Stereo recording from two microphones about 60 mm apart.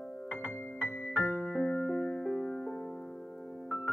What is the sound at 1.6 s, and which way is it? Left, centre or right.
Music, centre.